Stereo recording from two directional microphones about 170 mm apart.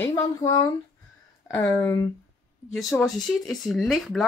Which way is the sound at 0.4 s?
25° left (ahead or behind).